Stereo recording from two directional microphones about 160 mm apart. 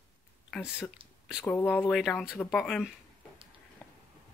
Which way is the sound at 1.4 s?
15° left (ahead or behind).